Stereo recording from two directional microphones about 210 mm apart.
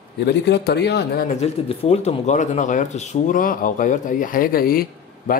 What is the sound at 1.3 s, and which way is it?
Speech, 30° left (ahead or behind).